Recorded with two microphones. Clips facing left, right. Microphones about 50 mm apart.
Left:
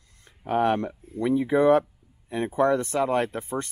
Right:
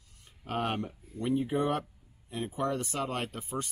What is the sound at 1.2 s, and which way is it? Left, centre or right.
Speech, left.